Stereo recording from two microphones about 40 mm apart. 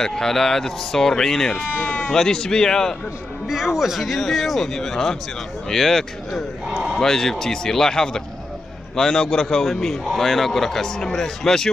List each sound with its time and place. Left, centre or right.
0.0 s speech: centre
3.4 s a man's voice: centre
6.7 s a man's voice: centre
7.0 s speech: centre